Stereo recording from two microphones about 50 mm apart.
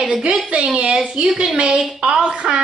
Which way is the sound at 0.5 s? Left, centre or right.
Right.